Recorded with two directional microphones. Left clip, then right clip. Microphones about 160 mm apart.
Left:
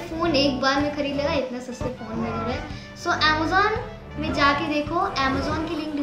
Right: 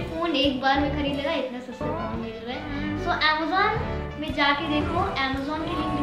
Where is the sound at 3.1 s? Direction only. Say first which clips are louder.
Left 3 dB; 15° left (ahead or behind).